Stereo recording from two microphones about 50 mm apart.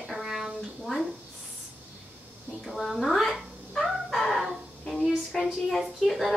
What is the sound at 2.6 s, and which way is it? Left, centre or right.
Speech, centre.